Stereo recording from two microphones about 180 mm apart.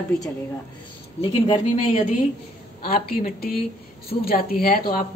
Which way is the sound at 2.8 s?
55° left (ahead or behind).